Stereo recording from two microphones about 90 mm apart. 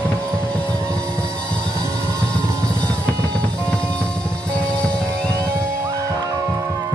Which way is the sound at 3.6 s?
10° left (ahead or behind).